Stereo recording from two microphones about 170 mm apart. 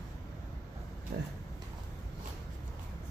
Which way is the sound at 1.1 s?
70° right (ahead or behind).